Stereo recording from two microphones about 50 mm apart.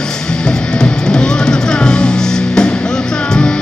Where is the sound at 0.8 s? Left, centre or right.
Centre.